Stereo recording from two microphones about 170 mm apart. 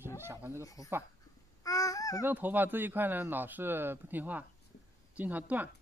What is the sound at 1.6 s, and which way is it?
Babbling, 20° left (ahead or behind).